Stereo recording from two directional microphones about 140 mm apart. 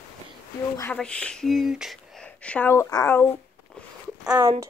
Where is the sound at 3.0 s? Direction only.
15° left (ahead or behind).